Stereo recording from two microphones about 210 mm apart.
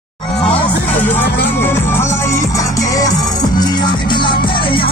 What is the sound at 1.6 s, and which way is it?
Music, 10° left (ahead or behind).